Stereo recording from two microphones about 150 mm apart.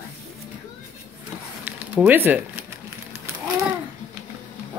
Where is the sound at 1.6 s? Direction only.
10° right (ahead or behind).